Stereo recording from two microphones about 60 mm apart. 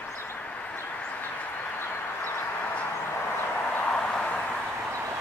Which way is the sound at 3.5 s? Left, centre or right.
Left.